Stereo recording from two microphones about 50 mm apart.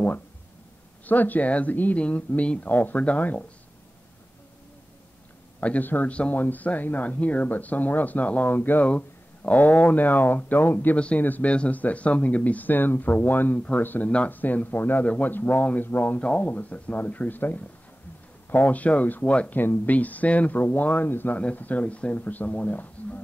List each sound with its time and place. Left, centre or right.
1.0 s speech: left
5.6 s a man's voice: left
6.3 s speech: left
8.8 s speech: left
14.0 s speech: left
15.0 s speech: left
15.3 s speech: left
16.2 s speech: left
21.4 s speech: left